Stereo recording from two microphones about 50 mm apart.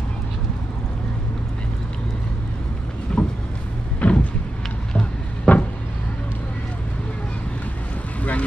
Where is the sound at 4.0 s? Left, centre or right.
Left.